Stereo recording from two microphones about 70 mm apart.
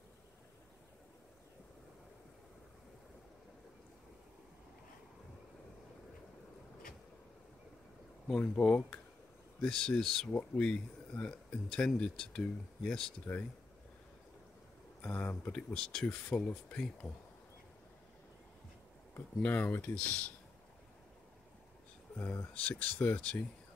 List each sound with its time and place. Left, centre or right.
8.4 s speech: centre
9.6 s speech: centre
15.0 s speech: left
15.7 s speech: centre
19.4 s speech: left
22.1 s speech: left